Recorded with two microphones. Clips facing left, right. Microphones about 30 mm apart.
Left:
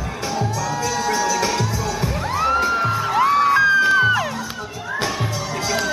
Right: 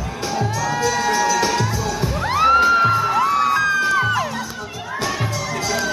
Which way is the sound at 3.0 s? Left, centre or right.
Centre.